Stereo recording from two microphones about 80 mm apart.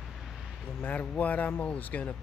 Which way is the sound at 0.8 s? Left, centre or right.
Centre.